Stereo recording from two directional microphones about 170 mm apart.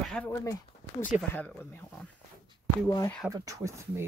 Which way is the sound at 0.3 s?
15° left (ahead or behind).